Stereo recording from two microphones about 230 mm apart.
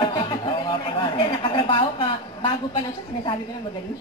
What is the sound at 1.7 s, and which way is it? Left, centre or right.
A woman's voice, left.